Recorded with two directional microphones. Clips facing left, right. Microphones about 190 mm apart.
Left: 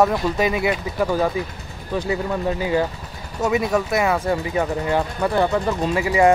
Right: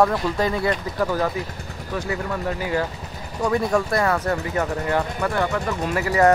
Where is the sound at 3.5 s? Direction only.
5° left (ahead or behind).